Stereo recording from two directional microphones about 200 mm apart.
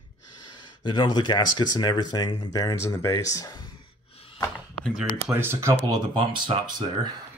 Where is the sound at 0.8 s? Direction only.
20° left (ahead or behind).